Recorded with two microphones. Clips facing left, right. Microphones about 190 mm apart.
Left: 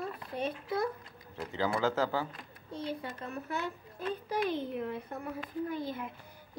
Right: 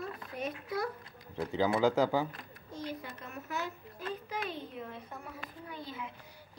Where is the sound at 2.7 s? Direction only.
30° left (ahead or behind).